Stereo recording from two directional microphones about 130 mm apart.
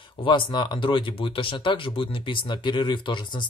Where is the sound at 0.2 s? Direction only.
40° left (ahead or behind).